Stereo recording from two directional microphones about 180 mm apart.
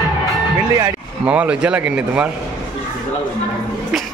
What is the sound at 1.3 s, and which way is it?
Speech, 5° right (ahead or behind).